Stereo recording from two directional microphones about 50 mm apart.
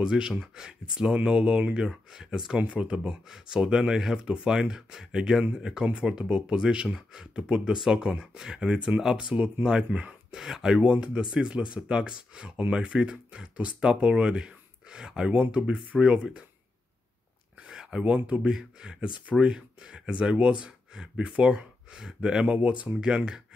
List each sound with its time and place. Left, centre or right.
0.0 s speech: centre
2.5 s speech: right
10.3 s speech: centre
10.9 s speech: right
17.6 s a sound: centre
18.1 s speech: right